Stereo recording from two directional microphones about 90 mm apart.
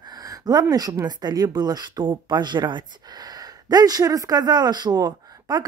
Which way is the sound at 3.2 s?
45° right (ahead or behind).